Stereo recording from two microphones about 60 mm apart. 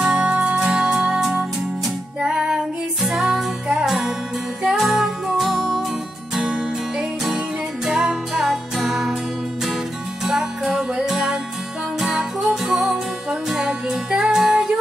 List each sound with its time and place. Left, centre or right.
0.0 s music: centre
2.2 s music: centre
10.2 s music: centre